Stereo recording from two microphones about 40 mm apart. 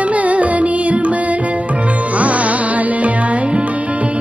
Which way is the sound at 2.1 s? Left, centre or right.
Right.